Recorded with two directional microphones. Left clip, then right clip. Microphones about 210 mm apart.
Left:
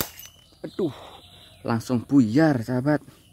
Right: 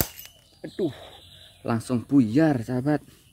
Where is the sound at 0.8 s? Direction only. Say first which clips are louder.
Left 1 dB; 10° left (ahead or behind).